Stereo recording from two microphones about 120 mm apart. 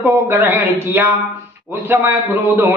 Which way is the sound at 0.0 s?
20° right (ahead or behind).